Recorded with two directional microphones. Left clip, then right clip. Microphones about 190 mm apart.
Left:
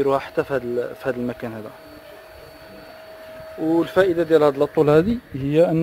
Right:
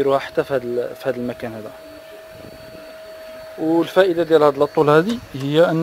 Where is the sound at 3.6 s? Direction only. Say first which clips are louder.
Right 2 dB; centre (ahead or behind).